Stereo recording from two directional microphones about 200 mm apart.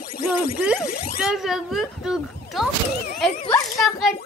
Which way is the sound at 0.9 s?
50° left (ahead or behind).